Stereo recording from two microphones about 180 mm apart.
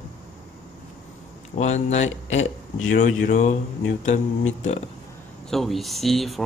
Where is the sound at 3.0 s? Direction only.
45° left (ahead or behind).